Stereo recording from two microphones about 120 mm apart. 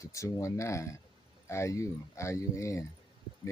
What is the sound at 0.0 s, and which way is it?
Speech, 25° left (ahead or behind).